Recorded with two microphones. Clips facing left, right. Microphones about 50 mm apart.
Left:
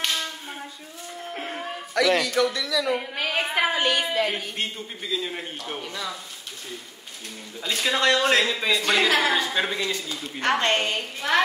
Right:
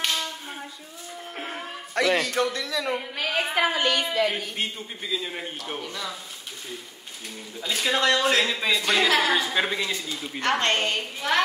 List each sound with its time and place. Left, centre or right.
0.0 s a sound: centre
2.0 s speech: right
3.2 s a woman's voice: centre
4.6 s a woman's voice: centre
7.6 s a woman's voice: centre
10.5 s a woman's voice: centre